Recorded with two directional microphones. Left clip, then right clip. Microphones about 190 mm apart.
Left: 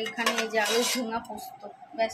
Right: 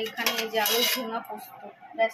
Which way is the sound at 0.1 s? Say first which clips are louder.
Left 3 dB; 10° left (ahead or behind).